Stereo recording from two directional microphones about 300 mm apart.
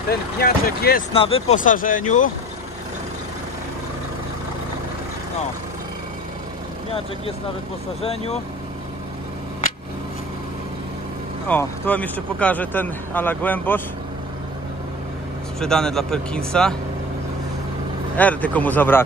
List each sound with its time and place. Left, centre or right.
0.1 s speech: left
1.1 s speech: centre
11.4 s speech: centre
15.6 s speech: centre
18.1 s speech: centre